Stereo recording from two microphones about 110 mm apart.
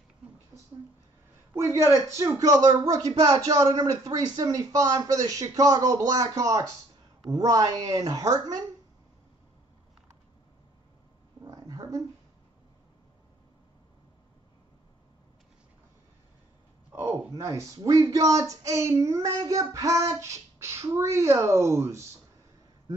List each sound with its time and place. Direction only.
1.5 s speech: 25° right (ahead or behind)
11.4 s a sound: 30° right (ahead or behind)
16.9 s speech: 20° right (ahead or behind)